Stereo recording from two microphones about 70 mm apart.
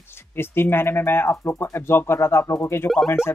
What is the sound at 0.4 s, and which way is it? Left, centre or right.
Speech, left.